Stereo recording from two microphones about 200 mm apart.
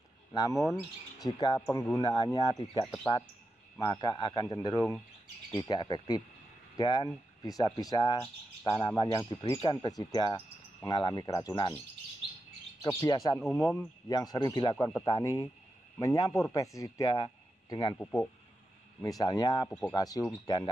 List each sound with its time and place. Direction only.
0.3 s speech: 15° left (ahead or behind)
10.3 s cricket: 15° left (ahead or behind)
12.8 s speech: 20° left (ahead or behind)
13.4 s speech: centre (ahead or behind)
14.0 s speech: 20° left (ahead or behind)
17.9 s speech: 5° left (ahead or behind)
18.9 s speech: 15° left (ahead or behind)